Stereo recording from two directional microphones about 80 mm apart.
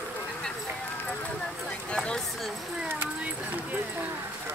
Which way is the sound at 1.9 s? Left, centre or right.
Centre.